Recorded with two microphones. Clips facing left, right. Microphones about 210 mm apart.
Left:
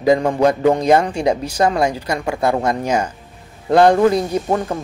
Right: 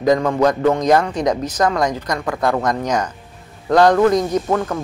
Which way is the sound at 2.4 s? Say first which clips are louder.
Left 1 dB; 25° left (ahead or behind).